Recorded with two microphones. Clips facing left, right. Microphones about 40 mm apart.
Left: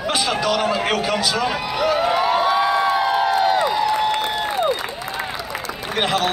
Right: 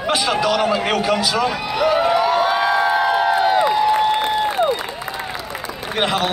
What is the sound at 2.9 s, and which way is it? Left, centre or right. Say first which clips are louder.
Crowd: right 1 dB; right.